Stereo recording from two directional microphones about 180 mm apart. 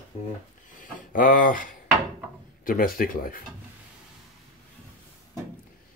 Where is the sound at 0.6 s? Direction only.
50° left (ahead or behind).